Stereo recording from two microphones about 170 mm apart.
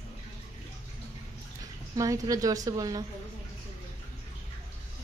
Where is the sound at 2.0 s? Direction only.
20° right (ahead or behind).